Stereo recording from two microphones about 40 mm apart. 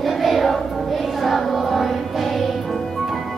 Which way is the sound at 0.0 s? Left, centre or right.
Centre.